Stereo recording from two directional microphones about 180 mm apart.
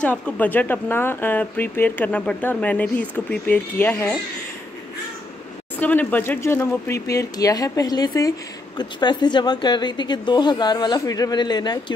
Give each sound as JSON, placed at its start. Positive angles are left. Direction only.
{"t": 0.0, "sound": "speech", "side_deg": 10}
{"t": 5.8, "sound": "a woman's voice", "side_deg": 10}